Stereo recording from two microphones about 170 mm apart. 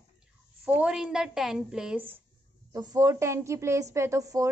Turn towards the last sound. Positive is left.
turn(degrees=-20)  # may be behind; listen again after turning